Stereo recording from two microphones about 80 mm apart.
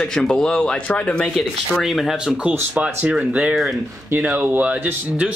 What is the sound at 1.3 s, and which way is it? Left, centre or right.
Speech, centre.